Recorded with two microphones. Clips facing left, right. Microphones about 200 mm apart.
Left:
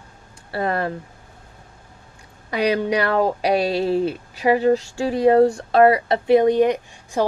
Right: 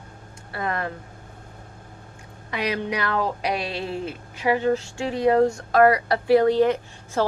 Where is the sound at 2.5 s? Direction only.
35° left (ahead or behind); by 7.2 s 15° left (ahead or behind).